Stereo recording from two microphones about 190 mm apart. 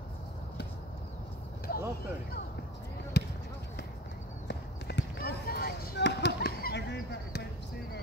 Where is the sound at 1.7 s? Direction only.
60° left (ahead or behind).